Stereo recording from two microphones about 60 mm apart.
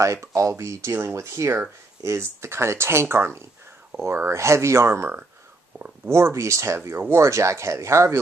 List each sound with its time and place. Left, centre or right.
0.0 s speech: right